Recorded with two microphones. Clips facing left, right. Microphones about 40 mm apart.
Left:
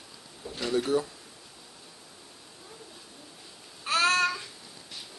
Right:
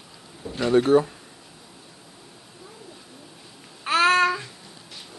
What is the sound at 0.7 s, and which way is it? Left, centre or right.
Speech, right.